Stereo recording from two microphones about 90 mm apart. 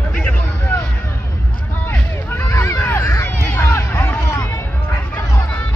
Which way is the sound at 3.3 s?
25° left (ahead or behind).